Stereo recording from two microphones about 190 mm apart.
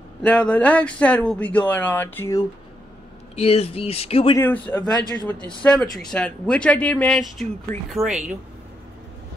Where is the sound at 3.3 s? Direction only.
30° left (ahead or behind).